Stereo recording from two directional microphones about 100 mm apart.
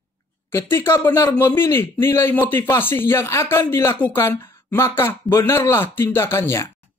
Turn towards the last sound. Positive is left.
turn(degrees=25)  # may be behind; listen again after turning